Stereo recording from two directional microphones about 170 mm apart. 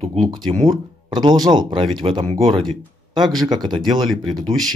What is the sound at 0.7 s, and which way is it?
Speech, 25° right (ahead or behind).